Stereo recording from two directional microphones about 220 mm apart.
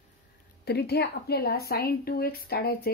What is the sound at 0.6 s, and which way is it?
A woman's voice, 45° left (ahead or behind).